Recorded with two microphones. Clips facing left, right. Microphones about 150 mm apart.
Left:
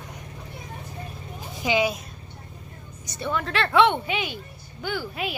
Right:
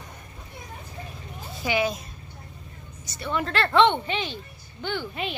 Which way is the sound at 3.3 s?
Centre (ahead or behind).